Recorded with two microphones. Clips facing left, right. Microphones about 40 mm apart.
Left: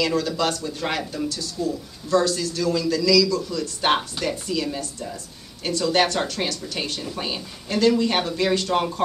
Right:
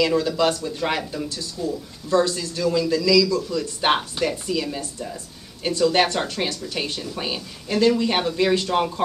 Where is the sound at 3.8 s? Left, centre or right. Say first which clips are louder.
Right 1 dB; centre.